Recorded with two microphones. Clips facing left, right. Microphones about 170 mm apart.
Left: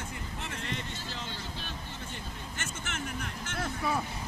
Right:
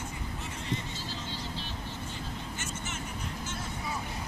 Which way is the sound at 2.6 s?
60° left (ahead or behind).